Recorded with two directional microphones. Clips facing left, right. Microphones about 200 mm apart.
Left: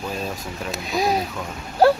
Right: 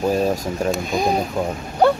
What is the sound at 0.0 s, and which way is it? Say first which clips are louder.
Speech: right 10 dB; 45° right (ahead or behind).